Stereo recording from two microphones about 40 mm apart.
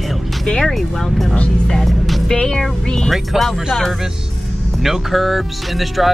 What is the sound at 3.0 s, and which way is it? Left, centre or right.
Speech, centre.